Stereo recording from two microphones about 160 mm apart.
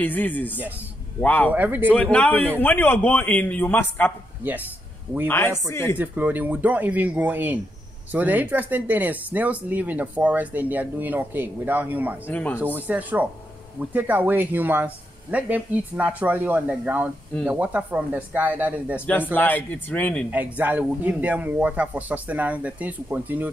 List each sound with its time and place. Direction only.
0.0 s a man's voice: 10° left (ahead or behind)
1.5 s speech: 10° right (ahead or behind)
1.9 s a man's voice: 10° left (ahead or behind)
5.7 s a man's voice: 15° left (ahead or behind)
5.9 s speech: 10° right (ahead or behind)
12.3 s a man's voice: 10° left (ahead or behind)
12.5 s speech: 10° right (ahead or behind)
19.3 s a man's voice: 10° left (ahead or behind)
20.2 s speech: 10° right (ahead or behind)